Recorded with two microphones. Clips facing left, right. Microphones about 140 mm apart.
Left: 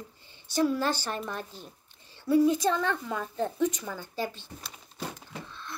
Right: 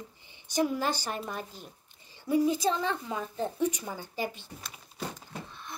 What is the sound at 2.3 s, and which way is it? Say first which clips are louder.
A child's voice: left 3 dB; 15° right (ahead or behind).